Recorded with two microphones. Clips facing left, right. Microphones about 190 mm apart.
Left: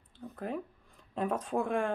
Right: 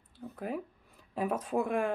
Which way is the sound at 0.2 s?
Centre (ahead or behind).